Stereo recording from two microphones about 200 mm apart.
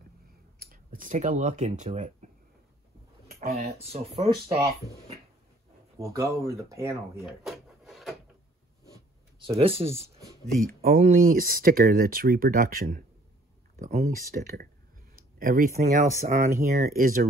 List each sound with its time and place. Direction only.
0.6 s speech: 45° right (ahead or behind)
3.4 s speech: 30° right (ahead or behind)
5.9 s speech: 15° right (ahead or behind)
7.2 s wood: centre (ahead or behind)
9.6 s speech: 30° right (ahead or behind)
10.6 s speech: 45° right (ahead or behind)